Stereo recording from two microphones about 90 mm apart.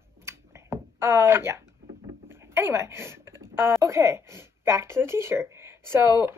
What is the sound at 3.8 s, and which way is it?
Speech, 30° right (ahead or behind).